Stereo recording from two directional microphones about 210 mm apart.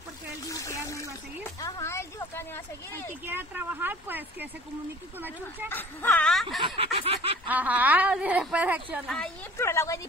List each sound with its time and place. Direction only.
0.5 s a sound: 15° left (ahead or behind)
3.3 s a woman's voice: 10° right (ahead or behind)
5.7 s speech: 10° left (ahead or behind)
6.6 s a sound: 25° right (ahead or behind)
7.4 s a woman's voice: 10° right (ahead or behind)
9.6 s a woman's voice: 15° left (ahead or behind)